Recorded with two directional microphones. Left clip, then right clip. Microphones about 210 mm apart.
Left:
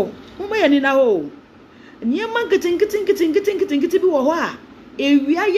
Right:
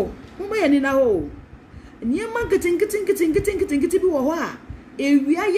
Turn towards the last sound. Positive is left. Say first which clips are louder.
# left 2 dB
turn(degrees=-20)  # may be behind; listen again after turning